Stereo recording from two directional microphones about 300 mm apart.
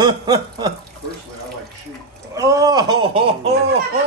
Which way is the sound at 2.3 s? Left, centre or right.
Centre.